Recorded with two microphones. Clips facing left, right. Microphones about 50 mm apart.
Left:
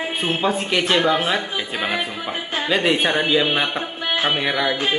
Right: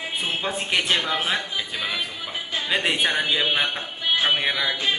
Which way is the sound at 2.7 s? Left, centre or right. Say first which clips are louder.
Left 5 dB; centre.